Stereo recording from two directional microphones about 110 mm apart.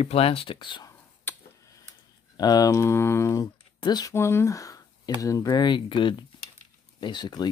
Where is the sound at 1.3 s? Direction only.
20° left (ahead or behind).